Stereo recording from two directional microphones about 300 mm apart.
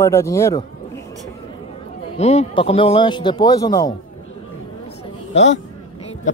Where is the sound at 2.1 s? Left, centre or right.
Left.